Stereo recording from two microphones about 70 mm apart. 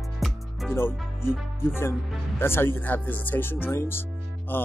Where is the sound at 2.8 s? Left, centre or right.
Left.